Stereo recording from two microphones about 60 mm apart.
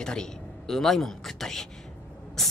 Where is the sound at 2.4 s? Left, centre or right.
Centre.